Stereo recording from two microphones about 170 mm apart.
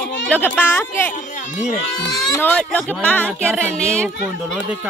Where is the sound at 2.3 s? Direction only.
10° left (ahead or behind).